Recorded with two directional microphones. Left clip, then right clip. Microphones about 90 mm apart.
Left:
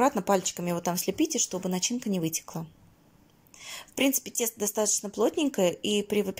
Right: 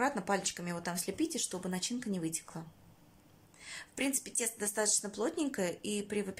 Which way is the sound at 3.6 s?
30° left (ahead or behind).